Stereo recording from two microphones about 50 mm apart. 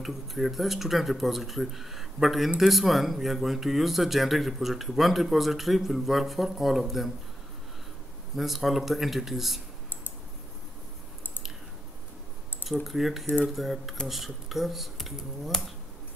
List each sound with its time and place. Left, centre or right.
0.0 s speech: centre
8.4 s speech: centre
12.8 s speech: centre